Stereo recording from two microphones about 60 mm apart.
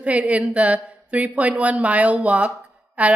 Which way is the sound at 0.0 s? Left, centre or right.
Right.